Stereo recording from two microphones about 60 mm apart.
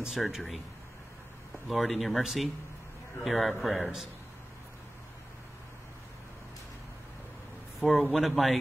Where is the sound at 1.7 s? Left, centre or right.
Centre.